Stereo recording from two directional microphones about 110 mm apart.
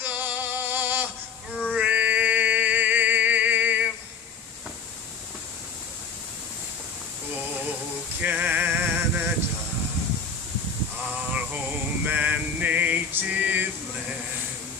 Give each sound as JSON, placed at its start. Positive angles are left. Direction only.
{"t": 0.0, "sound": "music", "side_deg": -15}
{"t": 1.7, "sound": "a sound", "side_deg": -10}
{"t": 8.2, "sound": "male singing", "side_deg": -15}
{"t": 11.3, "sound": "male singing", "side_deg": -15}